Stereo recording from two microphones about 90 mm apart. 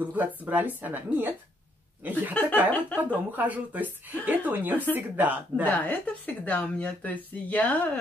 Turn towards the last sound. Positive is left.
turn(degrees=15)  # may be behind; listen again after turning